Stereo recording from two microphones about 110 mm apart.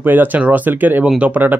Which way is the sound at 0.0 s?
15° right (ahead or behind).